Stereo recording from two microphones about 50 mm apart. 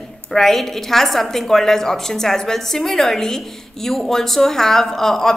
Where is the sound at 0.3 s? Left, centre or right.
Centre.